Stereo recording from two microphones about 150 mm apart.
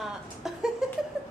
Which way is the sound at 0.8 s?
5° right (ahead or behind).